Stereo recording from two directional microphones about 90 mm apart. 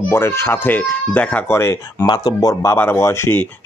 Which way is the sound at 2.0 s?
45° left (ahead or behind).